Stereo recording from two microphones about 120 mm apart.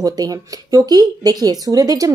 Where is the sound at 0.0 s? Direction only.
30° right (ahead or behind).